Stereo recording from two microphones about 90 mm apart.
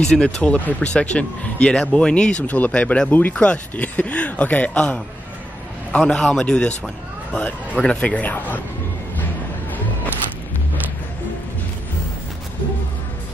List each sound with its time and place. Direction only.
0.0 s speech: 10° left (ahead or behind)
7.8 s speech: 10° left (ahead or behind)